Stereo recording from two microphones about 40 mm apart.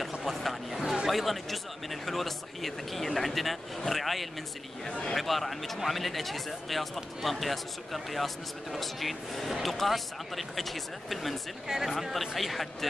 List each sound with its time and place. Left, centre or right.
0.2 s speech: centre
4.8 s speech: centre
5.1 s speech: centre